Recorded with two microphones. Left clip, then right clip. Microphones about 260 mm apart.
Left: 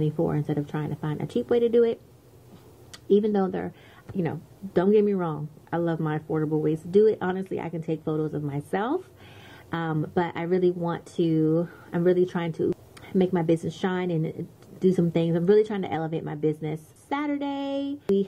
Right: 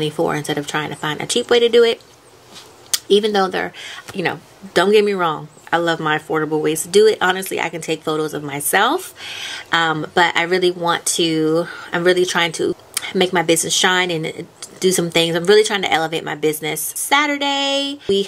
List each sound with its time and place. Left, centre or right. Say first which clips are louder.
0.0 s speech: right 8 dB; centre
3.1 s speech: right 7 dB; centre
11.4 s speech: right 7 dB; centre
11.7 s speech: right 8 dB; centre